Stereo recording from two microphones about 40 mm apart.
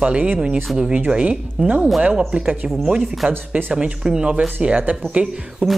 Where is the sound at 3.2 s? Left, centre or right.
Right.